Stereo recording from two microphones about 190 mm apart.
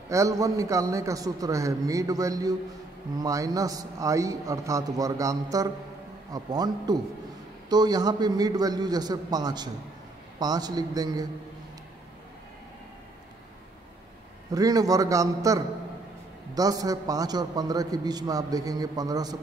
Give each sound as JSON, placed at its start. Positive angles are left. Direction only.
{"t": 0.1, "sound": "a man's voice", "side_deg": -15}
{"t": 14.5, "sound": "a man's voice", "side_deg": -20}